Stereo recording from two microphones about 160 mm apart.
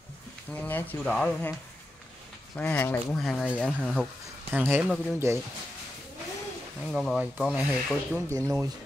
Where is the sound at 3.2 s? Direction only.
Centre (ahead or behind).